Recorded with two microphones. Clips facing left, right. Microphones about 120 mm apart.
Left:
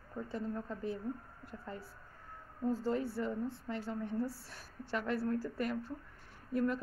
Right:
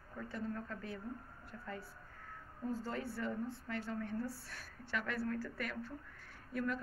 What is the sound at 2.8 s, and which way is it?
A woman's voice, 25° left (ahead or behind).